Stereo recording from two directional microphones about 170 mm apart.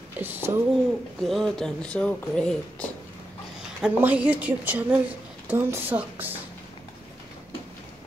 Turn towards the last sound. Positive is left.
turn(degrees=-10)  # may be behind; listen again after turning